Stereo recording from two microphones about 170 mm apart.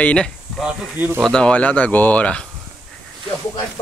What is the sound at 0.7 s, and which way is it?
Speech, 10° right (ahead or behind).